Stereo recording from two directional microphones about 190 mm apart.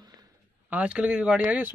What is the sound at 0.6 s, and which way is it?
Speech, 5° right (ahead or behind).